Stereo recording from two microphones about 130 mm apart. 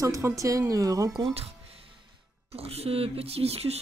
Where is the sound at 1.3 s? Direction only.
45° right (ahead or behind).